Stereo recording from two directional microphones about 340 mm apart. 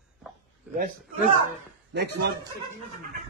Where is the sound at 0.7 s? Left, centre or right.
Right.